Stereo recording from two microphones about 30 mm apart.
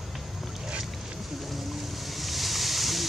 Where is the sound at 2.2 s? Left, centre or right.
Centre.